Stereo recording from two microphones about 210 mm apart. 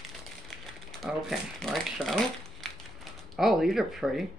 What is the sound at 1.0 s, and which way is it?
Speech, centre (ahead or behind).